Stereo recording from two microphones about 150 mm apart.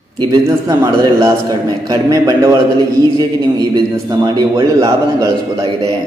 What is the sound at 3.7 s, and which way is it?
A man's voice, 25° right (ahead or behind).